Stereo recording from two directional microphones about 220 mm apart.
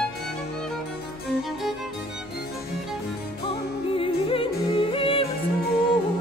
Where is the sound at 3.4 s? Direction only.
25° left (ahead or behind).